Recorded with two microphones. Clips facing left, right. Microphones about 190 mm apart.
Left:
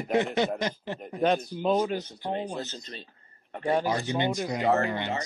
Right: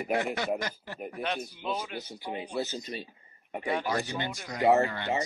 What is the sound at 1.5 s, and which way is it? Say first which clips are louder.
Speech: left 9 dB; 40° left (ahead or behind).